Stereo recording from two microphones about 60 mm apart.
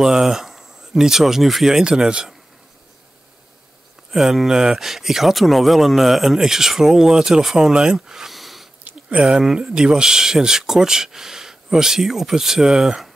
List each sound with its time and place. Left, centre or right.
0.0 s speech: centre
4.1 s speech: centre
8.9 s a sound: right
9.4 s speech: centre